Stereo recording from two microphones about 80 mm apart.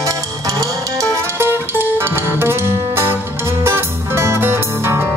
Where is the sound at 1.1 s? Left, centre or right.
Right.